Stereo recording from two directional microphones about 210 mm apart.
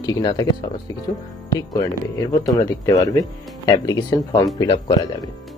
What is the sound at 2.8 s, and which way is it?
Speech, 15° left (ahead or behind).